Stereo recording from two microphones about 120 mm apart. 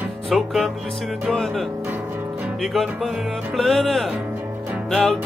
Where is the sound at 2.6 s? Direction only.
Centre (ahead or behind).